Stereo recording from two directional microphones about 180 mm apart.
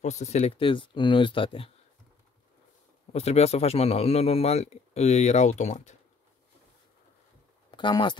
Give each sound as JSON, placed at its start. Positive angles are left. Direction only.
{"t": 0.0, "sound": "speech", "side_deg": 40}
{"t": 3.1, "sound": "a man's voice", "side_deg": 35}
{"t": 7.7, "sound": "speech", "side_deg": 25}